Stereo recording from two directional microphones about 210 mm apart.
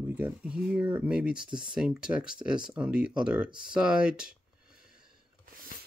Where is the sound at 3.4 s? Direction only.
20° right (ahead or behind).